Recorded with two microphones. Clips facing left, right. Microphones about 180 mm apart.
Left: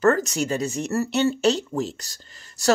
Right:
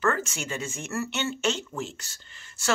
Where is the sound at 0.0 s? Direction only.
40° left (ahead or behind).